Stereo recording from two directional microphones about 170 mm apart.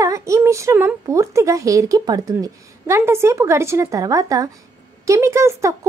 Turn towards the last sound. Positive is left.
turn(degrees=-15)  # may be behind; listen again after turning